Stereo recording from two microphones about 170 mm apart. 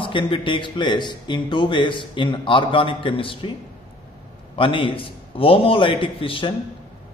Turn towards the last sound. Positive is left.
turn(degrees=30)  # may be behind; listen again after turning